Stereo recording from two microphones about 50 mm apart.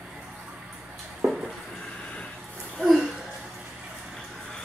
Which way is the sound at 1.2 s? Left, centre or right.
Right.